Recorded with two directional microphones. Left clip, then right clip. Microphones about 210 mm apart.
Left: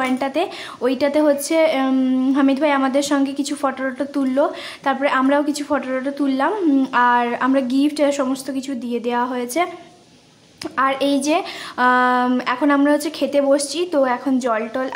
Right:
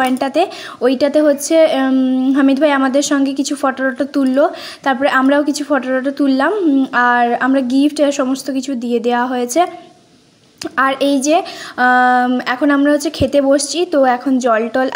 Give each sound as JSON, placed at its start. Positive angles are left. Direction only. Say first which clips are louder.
{"t": 0.0, "sound": "speech", "louder": "right 6 dB", "side_deg": -20}